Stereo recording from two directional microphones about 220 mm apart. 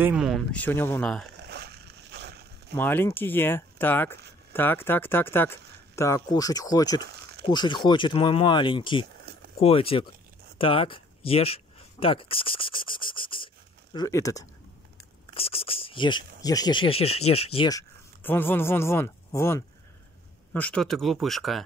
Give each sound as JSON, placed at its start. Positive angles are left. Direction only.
{"t": 0.0, "sound": "speech", "side_deg": -5}
{"t": 1.5, "sound": "a sound", "side_deg": -45}
{"t": 2.7, "sound": "speech", "side_deg": 10}
{"t": 15.3, "sound": "speech", "side_deg": 25}